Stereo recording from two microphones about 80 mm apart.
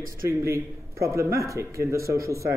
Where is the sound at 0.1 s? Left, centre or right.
Right.